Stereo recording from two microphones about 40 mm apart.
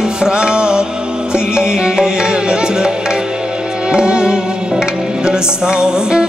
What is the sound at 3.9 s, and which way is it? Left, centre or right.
Music, right.